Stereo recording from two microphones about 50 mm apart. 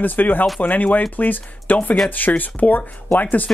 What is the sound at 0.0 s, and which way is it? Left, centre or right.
Speech, left.